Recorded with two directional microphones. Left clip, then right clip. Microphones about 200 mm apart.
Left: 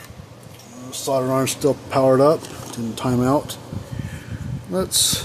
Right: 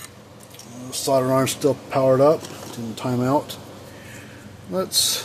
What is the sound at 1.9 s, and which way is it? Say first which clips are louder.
Speech: left 1 dB; 25° left (ahead or behind).